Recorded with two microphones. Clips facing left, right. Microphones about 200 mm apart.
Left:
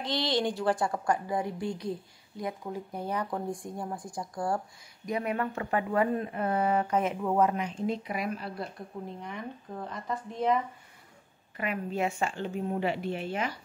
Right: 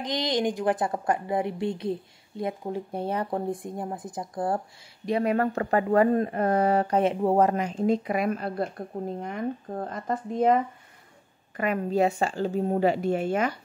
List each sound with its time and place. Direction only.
0.0 s a woman's voice: 15° right (ahead or behind)
5.0 s speech: 35° right (ahead or behind); by 13.6 s 50° right (ahead or behind)